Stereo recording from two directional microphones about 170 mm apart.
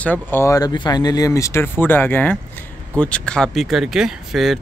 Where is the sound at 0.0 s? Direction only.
10° left (ahead or behind).